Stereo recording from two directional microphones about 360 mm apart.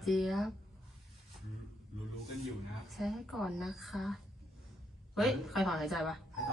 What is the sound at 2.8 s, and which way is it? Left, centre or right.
A woman's voice, centre.